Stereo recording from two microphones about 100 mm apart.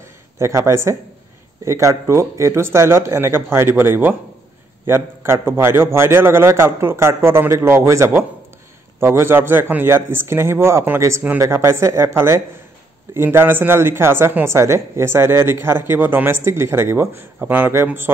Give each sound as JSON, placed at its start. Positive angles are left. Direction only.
{"t": 0.4, "sound": "speech", "side_deg": -30}